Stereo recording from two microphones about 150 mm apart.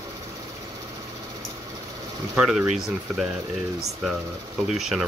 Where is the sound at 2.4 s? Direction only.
Centre (ahead or behind).